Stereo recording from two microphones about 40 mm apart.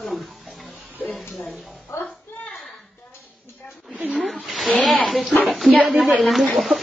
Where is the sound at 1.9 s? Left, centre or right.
Left.